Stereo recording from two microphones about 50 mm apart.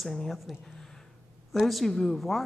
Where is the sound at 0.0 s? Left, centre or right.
Centre.